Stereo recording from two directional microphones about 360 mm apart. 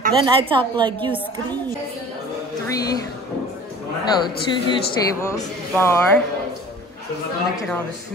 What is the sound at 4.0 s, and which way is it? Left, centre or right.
Speech, centre.